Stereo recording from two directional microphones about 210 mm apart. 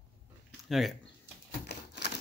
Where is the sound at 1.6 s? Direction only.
55° left (ahead or behind).